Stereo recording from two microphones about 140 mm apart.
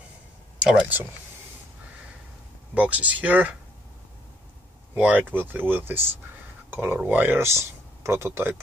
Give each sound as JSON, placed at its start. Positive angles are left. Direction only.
{"t": 0.6, "sound": "speech", "side_deg": -10}
{"t": 2.7, "sound": "speech", "side_deg": -10}
{"t": 4.9, "sound": "speech", "side_deg": -10}